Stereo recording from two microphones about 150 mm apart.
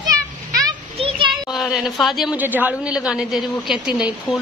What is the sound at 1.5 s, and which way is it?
A woman's voice, centre (ahead or behind).